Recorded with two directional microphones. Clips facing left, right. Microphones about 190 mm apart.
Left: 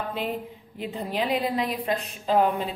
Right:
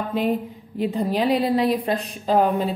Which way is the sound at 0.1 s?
45° right (ahead or behind).